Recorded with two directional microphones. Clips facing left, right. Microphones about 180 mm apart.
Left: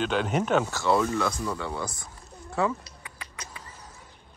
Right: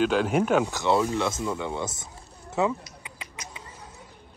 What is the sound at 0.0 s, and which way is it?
Speech, 5° right (ahead or behind).